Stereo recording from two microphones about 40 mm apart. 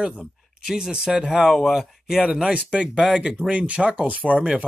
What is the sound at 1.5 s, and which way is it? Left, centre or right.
Speech, centre.